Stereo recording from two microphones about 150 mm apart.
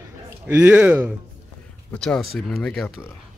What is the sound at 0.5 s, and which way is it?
Speech, 10° right (ahead or behind).